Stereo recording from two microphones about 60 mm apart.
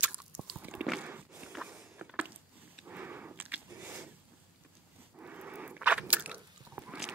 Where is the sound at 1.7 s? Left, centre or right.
Right.